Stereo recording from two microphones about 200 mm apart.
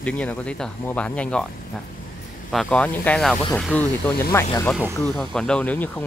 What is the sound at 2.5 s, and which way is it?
Speech, 5° left (ahead or behind).